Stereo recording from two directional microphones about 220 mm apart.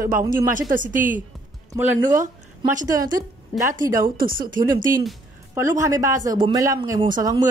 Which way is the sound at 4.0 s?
40° right (ahead or behind).